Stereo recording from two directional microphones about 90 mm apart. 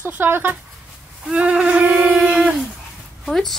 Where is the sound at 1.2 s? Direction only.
10° right (ahead or behind).